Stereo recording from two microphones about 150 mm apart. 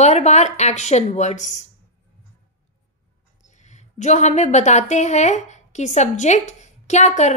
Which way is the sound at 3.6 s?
50° left (ahead or behind).